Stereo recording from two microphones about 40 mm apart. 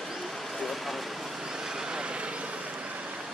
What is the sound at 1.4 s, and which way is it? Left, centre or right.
Vehicle, centre.